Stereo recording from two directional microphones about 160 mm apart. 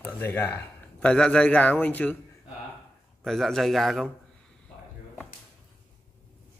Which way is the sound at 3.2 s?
Centre (ahead or behind).